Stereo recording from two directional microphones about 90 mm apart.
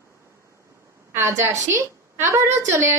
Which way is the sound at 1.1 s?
30° right (ahead or behind).